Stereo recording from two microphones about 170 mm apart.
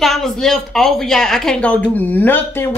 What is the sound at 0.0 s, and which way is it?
Speech, centre (ahead or behind).